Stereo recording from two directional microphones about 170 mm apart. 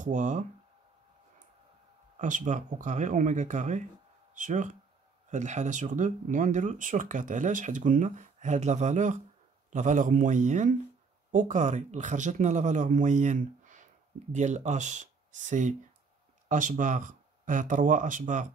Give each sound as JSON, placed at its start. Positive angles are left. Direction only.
{"t": 0.0, "sound": "speech", "side_deg": -45}
{"t": 2.1, "sound": "speech", "side_deg": -50}